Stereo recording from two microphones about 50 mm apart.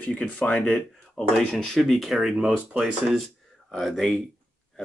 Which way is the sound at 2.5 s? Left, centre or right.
Centre.